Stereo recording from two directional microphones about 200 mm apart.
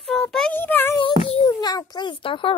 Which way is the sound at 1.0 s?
25° left (ahead or behind).